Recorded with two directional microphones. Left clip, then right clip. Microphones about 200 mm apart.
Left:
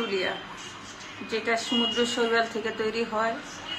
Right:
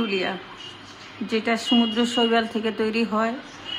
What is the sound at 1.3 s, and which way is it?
A woman's voice, 55° right (ahead or behind).